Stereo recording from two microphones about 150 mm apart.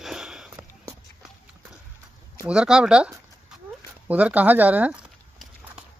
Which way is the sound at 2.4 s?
5° right (ahead or behind).